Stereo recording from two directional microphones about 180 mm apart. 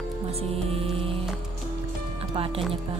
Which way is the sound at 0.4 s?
30° right (ahead or behind).